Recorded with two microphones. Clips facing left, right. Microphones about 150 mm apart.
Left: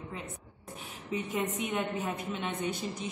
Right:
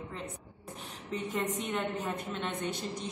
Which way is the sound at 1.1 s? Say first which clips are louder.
Left 1 dB; 5° left (ahead or behind).